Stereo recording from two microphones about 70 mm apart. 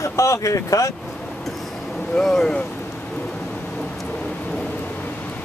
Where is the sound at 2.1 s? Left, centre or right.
Centre.